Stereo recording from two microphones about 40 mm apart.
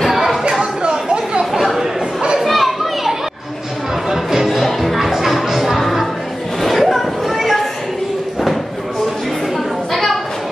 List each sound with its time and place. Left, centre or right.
0.1 s chatter: centre
1.4 s chatter: centre
2.4 s children playing: centre
4.1 s music: centre
6.6 s a sound: centre